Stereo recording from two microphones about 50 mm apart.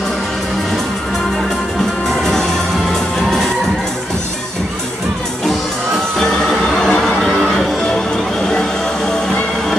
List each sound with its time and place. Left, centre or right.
2.0 s music: centre
6.1 s music: centre